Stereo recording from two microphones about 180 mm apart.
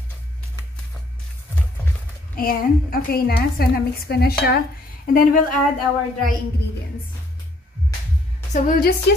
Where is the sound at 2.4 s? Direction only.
55° left (ahead or behind).